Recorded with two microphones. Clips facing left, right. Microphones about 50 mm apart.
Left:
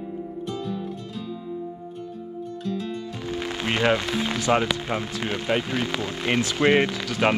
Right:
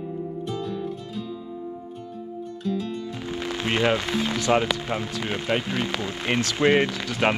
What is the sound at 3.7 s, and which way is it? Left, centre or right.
Music, left.